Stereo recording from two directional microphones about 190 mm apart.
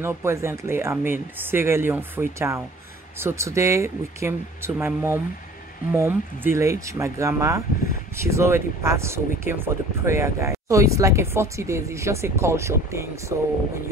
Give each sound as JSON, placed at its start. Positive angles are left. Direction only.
{"t": 0.0, "sound": "speech", "side_deg": -15}